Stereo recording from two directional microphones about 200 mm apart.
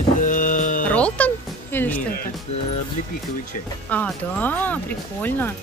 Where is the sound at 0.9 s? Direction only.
5° left (ahead or behind).